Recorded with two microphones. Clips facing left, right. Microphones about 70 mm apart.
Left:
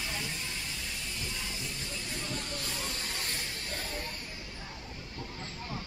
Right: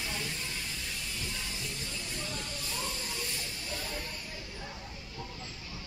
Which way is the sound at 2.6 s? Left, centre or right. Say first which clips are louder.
Even; left.